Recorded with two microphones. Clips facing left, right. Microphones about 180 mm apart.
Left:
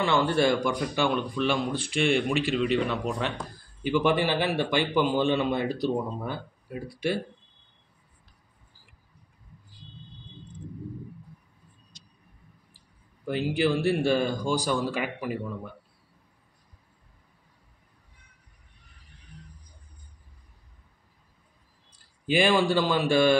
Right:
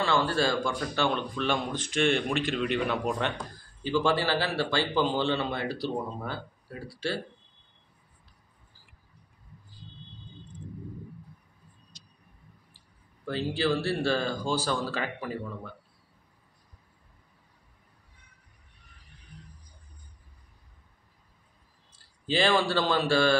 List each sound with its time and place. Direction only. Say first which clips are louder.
0.0 s speech: left 3 dB; 20° left (ahead or behind); by 3.3 s centre (ahead or behind)
3.8 s speech: left 2 dB; 15° left (ahead or behind)
13.2 s speech: left 3 dB; 15° left (ahead or behind)
21.9 s a man's voice: left 4 dB; 15° left (ahead or behind)